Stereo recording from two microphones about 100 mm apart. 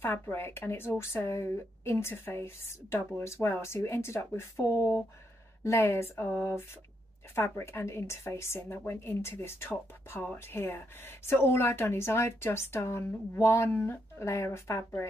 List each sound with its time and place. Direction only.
0.0 s speech: 25° left (ahead or behind)